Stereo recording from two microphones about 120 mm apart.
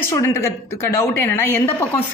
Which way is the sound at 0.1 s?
25° left (ahead or behind).